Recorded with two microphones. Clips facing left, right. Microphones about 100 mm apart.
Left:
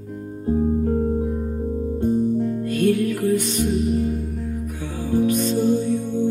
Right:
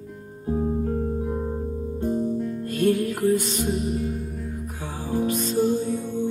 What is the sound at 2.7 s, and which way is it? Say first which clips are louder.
Music: left 2 dB; 35° right (ahead or behind).